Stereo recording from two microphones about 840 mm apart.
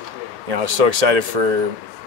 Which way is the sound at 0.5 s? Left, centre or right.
Right.